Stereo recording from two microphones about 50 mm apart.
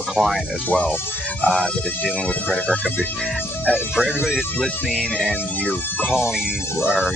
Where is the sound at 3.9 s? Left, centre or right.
Centre.